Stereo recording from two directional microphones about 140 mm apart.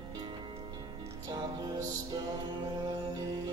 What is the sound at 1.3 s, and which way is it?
Music, 30° right (ahead or behind).